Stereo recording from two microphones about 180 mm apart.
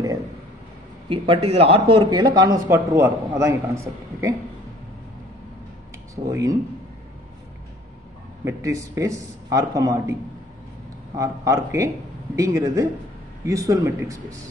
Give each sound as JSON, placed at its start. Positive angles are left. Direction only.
{"t": 1.0, "sound": "a man's voice", "side_deg": -30}
{"t": 6.2, "sound": "a man's voice", "side_deg": -20}
{"t": 8.5, "sound": "a man's voice", "side_deg": -15}
{"t": 11.1, "sound": "a man's voice", "side_deg": -15}